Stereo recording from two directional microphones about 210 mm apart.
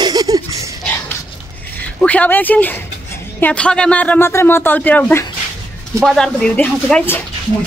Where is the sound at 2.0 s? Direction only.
5° left (ahead or behind).